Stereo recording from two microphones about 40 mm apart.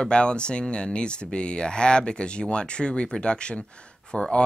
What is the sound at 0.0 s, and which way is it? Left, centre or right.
Speech, left.